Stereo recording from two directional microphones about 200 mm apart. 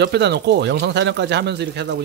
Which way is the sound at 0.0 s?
55° right (ahead or behind).